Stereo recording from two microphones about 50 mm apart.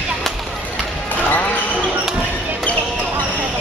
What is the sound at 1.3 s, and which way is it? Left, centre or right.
Basketball bounce, left.